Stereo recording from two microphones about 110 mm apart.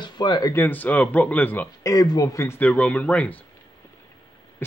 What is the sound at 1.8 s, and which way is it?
A man's voice, 35° left (ahead or behind).